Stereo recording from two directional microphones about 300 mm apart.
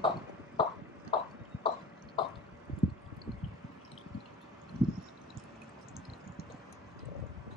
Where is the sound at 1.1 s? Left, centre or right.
Centre.